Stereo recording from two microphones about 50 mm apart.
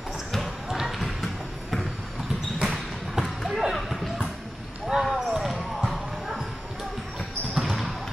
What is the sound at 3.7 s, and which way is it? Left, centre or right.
Basketball bounce, centre.